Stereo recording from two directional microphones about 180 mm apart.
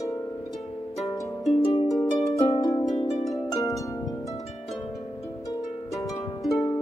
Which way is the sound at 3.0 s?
40° left (ahead or behind).